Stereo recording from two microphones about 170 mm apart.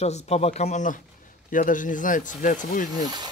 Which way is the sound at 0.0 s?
40° left (ahead or behind).